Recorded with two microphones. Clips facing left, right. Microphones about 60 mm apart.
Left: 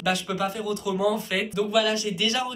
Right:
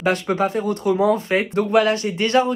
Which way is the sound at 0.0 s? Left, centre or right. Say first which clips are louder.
Right 6 dB; right.